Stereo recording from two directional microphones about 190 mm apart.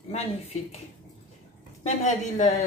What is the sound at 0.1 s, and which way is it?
Speech, 35° left (ahead or behind).